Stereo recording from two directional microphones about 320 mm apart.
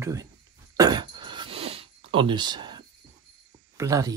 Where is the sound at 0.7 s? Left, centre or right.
Centre.